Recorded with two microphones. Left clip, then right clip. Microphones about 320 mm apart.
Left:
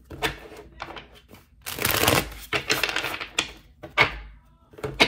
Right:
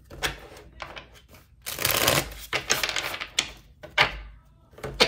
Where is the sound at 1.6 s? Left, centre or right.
Centre.